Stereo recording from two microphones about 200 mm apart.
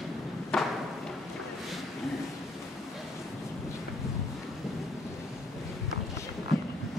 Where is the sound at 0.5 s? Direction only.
5° left (ahead or behind).